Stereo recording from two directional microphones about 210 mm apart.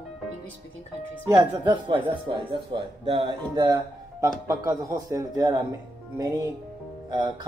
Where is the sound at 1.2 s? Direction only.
20° right (ahead or behind).